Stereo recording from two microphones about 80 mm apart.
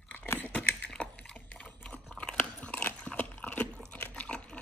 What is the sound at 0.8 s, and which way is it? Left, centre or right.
Chewing, centre.